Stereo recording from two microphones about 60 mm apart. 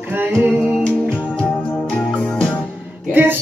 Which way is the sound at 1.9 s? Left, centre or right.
Centre.